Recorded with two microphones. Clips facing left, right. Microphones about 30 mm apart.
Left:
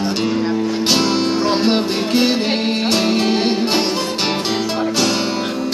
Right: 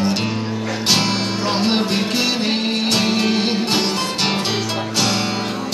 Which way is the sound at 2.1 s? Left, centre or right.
Left.